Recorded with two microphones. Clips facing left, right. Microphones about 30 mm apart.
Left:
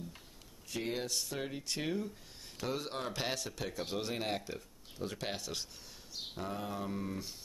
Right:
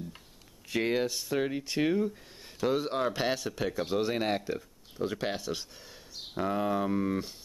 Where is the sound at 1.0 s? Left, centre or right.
Centre.